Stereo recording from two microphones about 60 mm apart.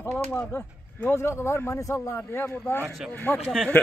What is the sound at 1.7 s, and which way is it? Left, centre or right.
Speech, left.